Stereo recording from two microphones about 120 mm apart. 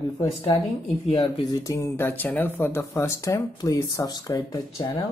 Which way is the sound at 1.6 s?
25° left (ahead or behind).